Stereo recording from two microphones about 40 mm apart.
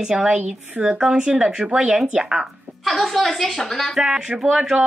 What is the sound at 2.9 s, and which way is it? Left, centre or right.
A woman's voice, centre.